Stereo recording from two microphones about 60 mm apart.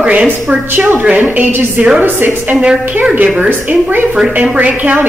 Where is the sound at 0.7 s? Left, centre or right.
Right.